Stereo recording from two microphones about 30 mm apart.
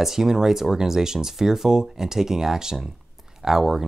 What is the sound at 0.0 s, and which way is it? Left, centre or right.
Speech, centre.